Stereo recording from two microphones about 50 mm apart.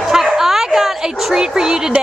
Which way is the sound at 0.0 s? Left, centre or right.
Centre.